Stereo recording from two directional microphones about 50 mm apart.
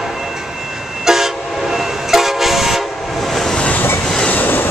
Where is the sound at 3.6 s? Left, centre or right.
Left.